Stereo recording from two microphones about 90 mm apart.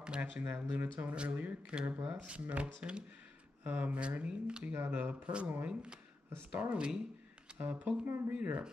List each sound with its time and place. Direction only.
0.0 s speech: 10° right (ahead or behind)
0.4 s speech: 20° right (ahead or behind)